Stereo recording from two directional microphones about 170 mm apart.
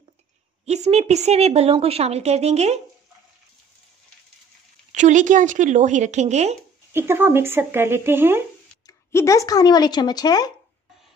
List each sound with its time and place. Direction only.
0.7 s a woman's voice: 40° right (ahead or behind)
4.9 s speech: 45° right (ahead or behind)
6.9 s speech: 15° right (ahead or behind)
8.8 s a woman's voice: 15° left (ahead or behind)